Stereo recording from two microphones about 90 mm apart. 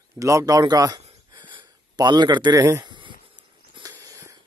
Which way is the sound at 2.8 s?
60° right (ahead or behind).